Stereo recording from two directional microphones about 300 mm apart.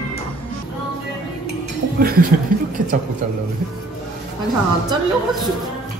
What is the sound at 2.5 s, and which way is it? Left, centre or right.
Speech, right.